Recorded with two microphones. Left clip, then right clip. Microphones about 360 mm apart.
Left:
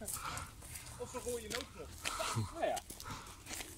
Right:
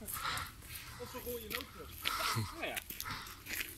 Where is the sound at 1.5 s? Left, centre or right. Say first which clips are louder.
Even; left.